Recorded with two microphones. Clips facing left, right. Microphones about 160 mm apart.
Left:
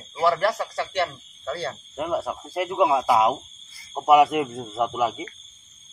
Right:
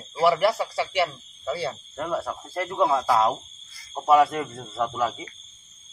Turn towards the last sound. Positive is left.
turn(degrees=15)  # may be behind; listen again after turning